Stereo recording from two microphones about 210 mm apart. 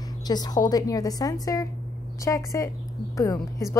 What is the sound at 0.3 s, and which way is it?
A woman's voice, 20° left (ahead or behind).